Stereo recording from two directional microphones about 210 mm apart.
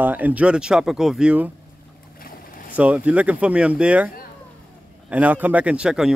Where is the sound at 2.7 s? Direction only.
5° right (ahead or behind).